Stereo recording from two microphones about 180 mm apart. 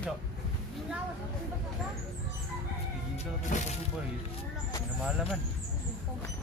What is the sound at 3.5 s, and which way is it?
Speech, 45° left (ahead or behind).